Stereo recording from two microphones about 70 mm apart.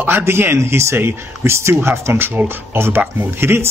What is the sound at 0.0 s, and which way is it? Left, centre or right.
Speech, right.